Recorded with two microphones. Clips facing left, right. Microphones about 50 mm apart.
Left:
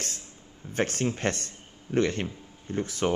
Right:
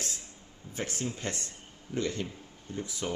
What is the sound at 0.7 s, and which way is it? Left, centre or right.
Speech, left.